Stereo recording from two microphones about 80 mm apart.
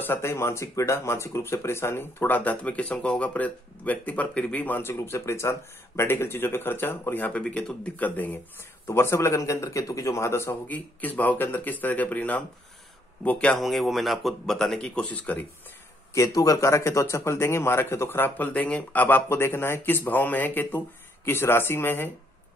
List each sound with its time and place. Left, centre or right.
0.0 s speech: left
7.4 s speech: centre
8.8 s speech: left
10.7 s speech: left
13.6 s speech: centre
16.2 s speech: left